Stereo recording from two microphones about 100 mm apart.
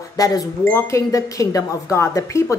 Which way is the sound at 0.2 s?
40° left (ahead or behind).